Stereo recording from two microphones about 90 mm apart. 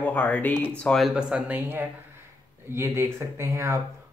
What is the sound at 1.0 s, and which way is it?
Speech, 5° right (ahead or behind).